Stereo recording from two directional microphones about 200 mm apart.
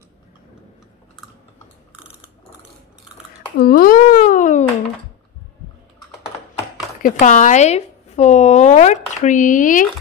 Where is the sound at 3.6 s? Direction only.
45° left (ahead or behind).